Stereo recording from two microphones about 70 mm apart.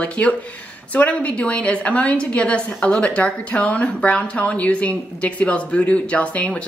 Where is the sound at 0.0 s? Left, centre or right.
Centre.